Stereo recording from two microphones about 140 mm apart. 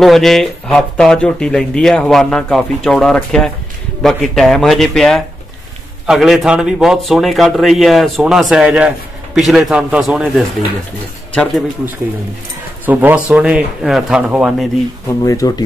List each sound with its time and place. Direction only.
0.0 s speech: centre (ahead or behind)
12.8 s speech: 15° right (ahead or behind)
15.2 s speech: 25° left (ahead or behind)